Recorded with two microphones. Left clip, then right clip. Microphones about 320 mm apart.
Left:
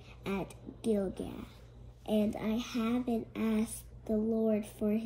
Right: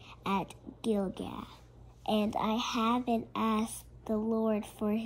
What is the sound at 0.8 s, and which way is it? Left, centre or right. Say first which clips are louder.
Speech: even; centre.